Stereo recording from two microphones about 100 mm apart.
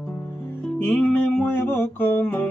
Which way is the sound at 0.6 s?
15° left (ahead or behind).